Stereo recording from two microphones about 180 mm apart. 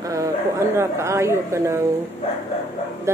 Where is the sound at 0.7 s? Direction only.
15° right (ahead or behind).